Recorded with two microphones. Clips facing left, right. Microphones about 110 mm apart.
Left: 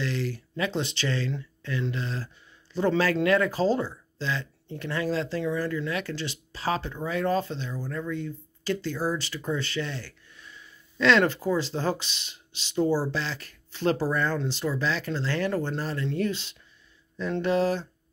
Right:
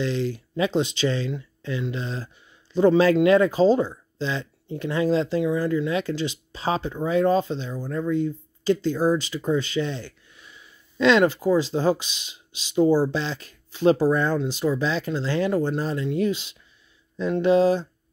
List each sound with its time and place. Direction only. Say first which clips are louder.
0.0 s speech: right 5 dB; 20° right (ahead or behind)